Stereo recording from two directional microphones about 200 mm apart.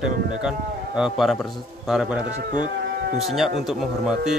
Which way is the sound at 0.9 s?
Centre (ahead or behind).